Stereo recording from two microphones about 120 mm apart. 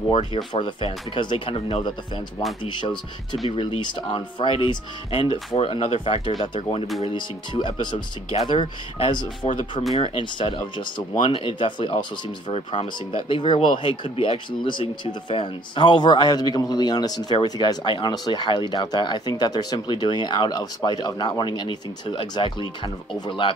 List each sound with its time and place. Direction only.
0.1 s speech: 50° left (ahead or behind)